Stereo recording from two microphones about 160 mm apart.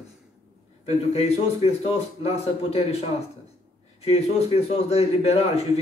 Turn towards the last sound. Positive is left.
turn(degrees=40)  # may be behind; listen again after turning